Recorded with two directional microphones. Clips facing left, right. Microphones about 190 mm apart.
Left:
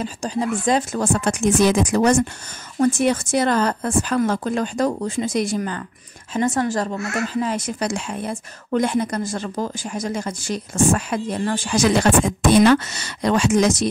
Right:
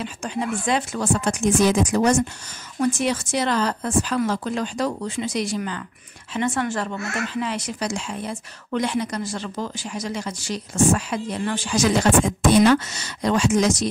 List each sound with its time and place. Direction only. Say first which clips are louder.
0.0 s speech: left 3 dB; 35° left (ahead or behind); by 2.2 s 65° left (ahead or behind)
2.8 s speech: left 4 dB; 50° left (ahead or behind)